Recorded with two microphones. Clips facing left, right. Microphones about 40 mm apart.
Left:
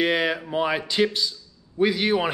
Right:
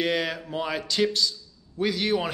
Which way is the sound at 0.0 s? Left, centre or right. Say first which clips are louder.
Left 4 dB; centre.